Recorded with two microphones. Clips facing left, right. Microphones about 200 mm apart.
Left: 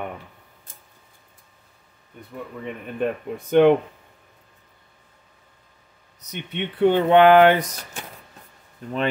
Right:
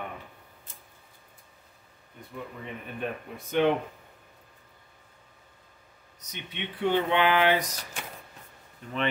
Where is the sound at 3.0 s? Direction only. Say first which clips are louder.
Left 11 dB; 60° left (ahead or behind).